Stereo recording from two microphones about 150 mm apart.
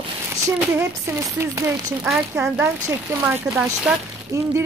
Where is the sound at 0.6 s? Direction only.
15° right (ahead or behind).